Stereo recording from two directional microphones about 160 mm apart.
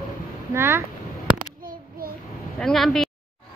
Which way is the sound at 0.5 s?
15° right (ahead or behind).